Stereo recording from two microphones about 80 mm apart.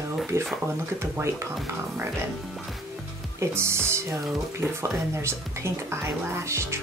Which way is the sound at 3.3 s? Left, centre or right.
Right.